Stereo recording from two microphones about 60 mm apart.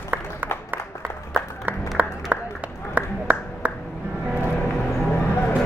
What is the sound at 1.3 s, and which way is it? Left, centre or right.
Applause, right.